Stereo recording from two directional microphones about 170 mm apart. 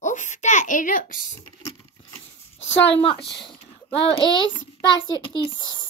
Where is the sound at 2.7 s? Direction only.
90° left.